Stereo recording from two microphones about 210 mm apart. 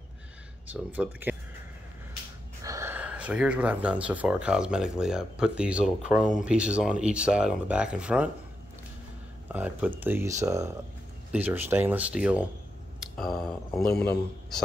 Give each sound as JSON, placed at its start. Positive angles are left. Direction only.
{"t": 0.9, "sound": "speech", "side_deg": -10}
{"t": 2.6, "sound": "speech", "side_deg": -15}
{"t": 9.5, "sound": "speech", "side_deg": -10}
{"t": 13.0, "sound": "a sound", "side_deg": 0}
{"t": 13.8, "sound": "a man's voice", "side_deg": 50}